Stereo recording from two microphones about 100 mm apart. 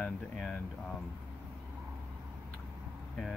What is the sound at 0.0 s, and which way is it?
Speech, 10° left (ahead or behind).